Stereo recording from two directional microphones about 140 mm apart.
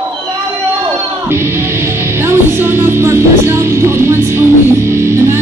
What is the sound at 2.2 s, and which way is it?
Music, 15° right (ahead or behind).